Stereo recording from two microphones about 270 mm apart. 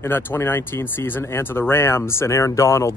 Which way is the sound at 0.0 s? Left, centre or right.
Centre.